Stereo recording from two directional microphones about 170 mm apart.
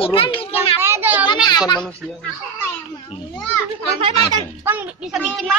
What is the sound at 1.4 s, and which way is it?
Speech, 25° left (ahead or behind).